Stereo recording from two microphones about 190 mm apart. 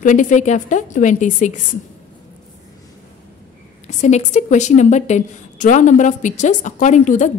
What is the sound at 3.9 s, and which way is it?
A woman's voice, 40° left (ahead or behind).